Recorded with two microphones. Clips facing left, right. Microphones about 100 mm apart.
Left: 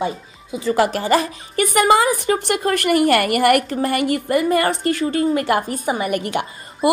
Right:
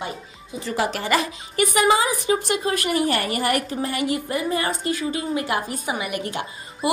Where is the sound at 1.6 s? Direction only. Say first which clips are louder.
Left 4 dB; 55° left (ahead or behind).